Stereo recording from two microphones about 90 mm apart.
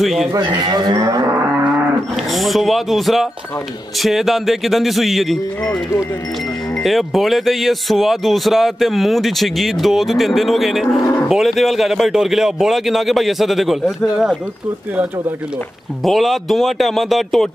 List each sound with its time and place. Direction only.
0.0 s speech: centre (ahead or behind)
0.6 s cattle: 50° right (ahead or behind)
1.0 s a sound: 40° right (ahead or behind)
2.3 s speech: centre (ahead or behind)
6.8 s speech: centre (ahead or behind)
16.0 s speech: centre (ahead or behind)